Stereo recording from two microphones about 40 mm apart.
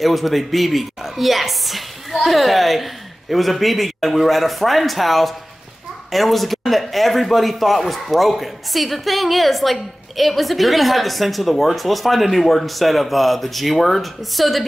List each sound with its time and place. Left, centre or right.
0.0 s a man's voice: centre